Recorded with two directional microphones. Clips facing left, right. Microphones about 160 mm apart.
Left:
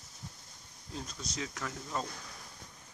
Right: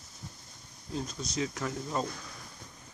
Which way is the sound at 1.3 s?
20° right (ahead or behind).